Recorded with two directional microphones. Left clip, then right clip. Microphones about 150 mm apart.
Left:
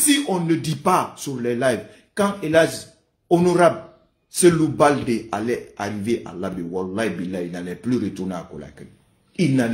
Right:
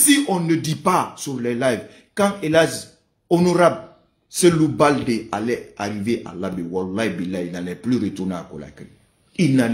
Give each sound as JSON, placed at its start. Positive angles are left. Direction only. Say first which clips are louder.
{"t": 0.0, "sound": "speech", "louder": "right 2 dB", "side_deg": -15}